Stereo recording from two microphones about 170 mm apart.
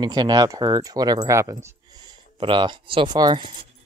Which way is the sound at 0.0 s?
25° right (ahead or behind).